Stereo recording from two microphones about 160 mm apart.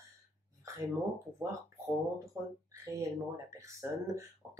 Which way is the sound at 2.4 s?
20° right (ahead or behind).